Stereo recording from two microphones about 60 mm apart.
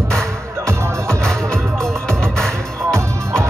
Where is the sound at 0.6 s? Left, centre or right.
Right.